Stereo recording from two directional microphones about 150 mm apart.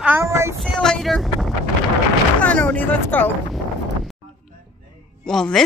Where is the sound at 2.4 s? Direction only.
10° left (ahead or behind).